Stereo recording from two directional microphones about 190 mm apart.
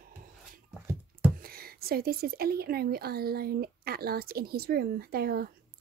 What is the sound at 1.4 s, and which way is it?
A woman's voice, 50° right (ahead or behind).